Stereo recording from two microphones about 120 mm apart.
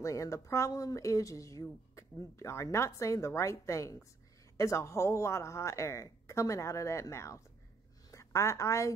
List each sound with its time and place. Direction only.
0.0 s a woman's voice: 25° left (ahead or behind)